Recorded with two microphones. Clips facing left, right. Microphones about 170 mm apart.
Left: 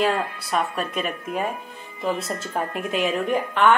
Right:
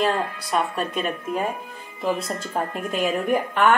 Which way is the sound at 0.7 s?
5° left (ahead or behind).